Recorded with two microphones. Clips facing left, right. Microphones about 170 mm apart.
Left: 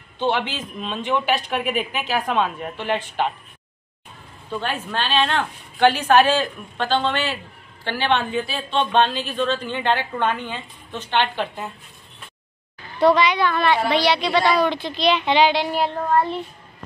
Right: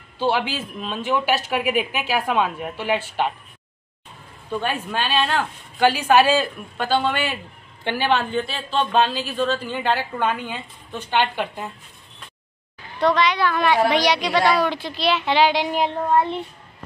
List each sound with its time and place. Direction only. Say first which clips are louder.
0.2 s speech: right 1 dB; 10° right (ahead or behind)
4.5 s a man's voice: right 2 dB; 10° right (ahead or behind)
8.1 s speech: left 1 dB; centre (ahead or behind)
13.0 s speech: left 2 dB; 5° left (ahead or behind)
13.5 s speech: right 1 dB; 10° right (ahead or behind)